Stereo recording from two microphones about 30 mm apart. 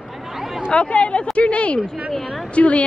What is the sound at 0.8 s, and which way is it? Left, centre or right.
A woman's voice, left.